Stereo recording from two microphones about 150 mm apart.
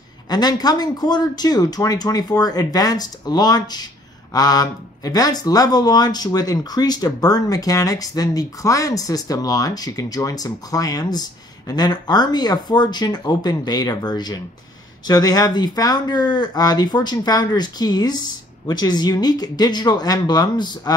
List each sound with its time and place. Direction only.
0.3 s speech: 25° left (ahead or behind)